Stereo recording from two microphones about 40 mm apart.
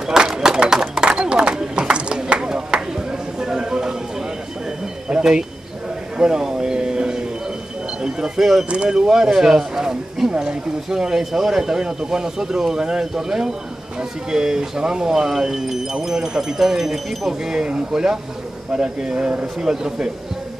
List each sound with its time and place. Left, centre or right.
0.0 s a sound: centre
5.1 s a sound: centre
8.0 s speech: centre
8.6 s speech: right
8.9 s speech: centre
10.3 s a sound: right
10.9 s speech: centre
17.5 s speech: right
19.6 s speech: centre